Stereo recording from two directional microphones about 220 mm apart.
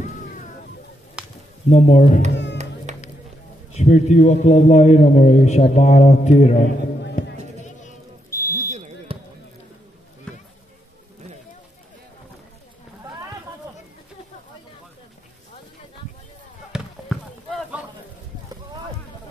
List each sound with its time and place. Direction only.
1.2 s a sound: 5° right (ahead or behind)
1.7 s a man's voice: 30° left (ahead or behind)
2.5 s music: 30° right (ahead or behind)
3.7 s a man's voice: 30° left (ahead or behind)
8.3 s fire alarm: 10° left (ahead or behind)
8.7 s fire alarm: 30° right (ahead or behind)
10.3 s a sound: 5° left (ahead or behind)
16.7 s basketball bounce: centre (ahead or behind)